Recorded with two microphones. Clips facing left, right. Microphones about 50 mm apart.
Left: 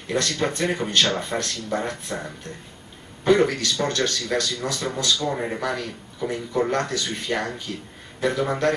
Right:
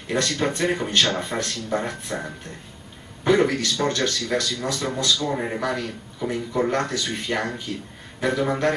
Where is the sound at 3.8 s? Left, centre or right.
Right.